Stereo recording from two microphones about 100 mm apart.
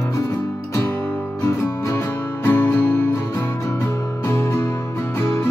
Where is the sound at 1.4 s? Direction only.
30° left (ahead or behind).